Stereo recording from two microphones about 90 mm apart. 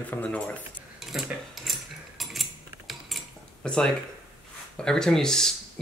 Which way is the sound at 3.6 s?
10° left (ahead or behind).